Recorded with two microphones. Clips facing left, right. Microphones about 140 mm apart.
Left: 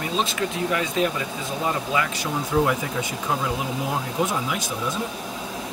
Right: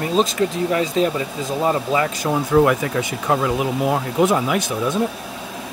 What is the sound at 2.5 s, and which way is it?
Speech, 75° right (ahead or behind).